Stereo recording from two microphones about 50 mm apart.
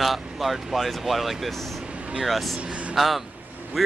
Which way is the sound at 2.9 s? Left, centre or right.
Centre.